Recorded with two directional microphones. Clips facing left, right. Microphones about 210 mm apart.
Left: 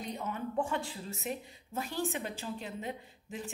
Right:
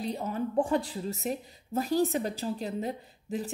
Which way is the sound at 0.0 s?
35° right (ahead or behind).